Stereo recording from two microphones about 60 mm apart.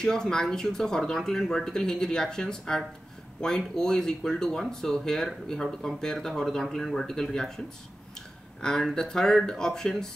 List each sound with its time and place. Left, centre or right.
0.0 s speech: centre